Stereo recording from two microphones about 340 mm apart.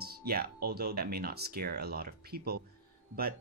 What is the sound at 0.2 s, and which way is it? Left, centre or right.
Speech, right.